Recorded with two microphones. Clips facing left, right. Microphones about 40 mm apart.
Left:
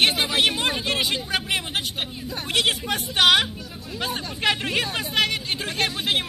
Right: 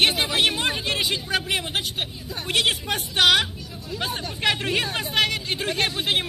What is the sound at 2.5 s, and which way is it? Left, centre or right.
Speech, centre.